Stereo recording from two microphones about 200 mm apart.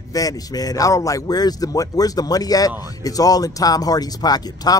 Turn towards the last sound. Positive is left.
turn(degrees=20)  # may be behind; listen again after turning